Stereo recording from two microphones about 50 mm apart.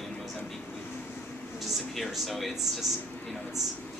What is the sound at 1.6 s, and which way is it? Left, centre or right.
Speech, centre.